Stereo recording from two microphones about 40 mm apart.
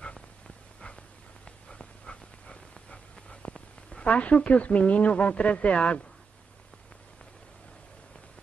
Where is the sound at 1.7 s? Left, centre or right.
Left.